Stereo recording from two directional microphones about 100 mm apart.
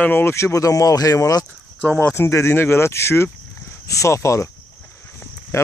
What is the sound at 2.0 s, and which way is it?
Speech, 25° left (ahead or behind).